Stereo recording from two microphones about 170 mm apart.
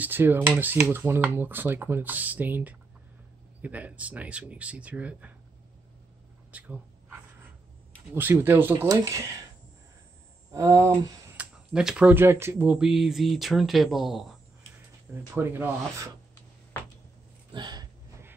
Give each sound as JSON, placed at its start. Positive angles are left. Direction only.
{"t": 0.0, "sound": "speech", "side_deg": -10}
{"t": 6.5, "sound": "dog", "side_deg": -10}
{"t": 8.1, "sound": "speech", "side_deg": -10}
{"t": 10.5, "sound": "speech", "side_deg": -15}
{"t": 15.3, "sound": "speech", "side_deg": -10}
{"t": 17.5, "sound": "a sound", "side_deg": -25}